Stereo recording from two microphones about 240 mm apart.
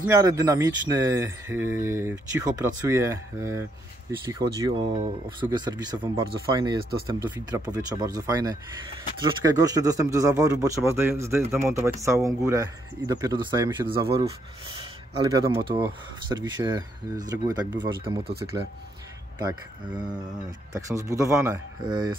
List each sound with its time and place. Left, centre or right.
0.0 s speech: centre
15.3 s speech: centre
19.3 s speech: centre